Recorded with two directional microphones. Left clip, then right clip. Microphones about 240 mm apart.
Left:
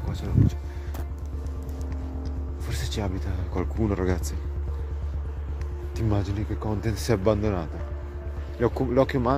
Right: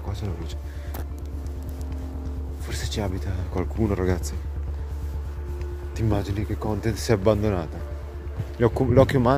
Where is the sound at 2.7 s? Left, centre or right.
Centre.